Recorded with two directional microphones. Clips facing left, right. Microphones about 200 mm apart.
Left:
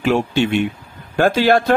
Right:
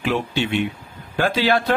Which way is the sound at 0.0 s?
45° left (ahead or behind).